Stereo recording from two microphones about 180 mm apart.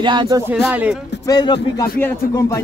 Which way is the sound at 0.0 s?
25° right (ahead or behind).